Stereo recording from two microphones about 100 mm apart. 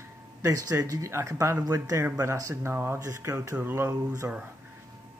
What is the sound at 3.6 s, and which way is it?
Speech, 20° right (ahead or behind).